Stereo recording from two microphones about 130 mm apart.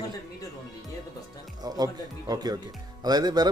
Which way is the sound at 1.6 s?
30° right (ahead or behind).